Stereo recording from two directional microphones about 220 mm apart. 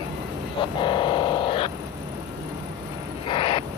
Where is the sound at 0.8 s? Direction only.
20° left (ahead or behind).